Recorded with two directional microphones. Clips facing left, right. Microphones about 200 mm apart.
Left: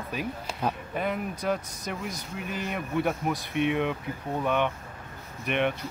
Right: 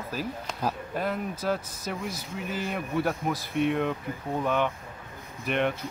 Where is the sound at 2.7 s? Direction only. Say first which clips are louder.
Left 1 dB; centre (ahead or behind).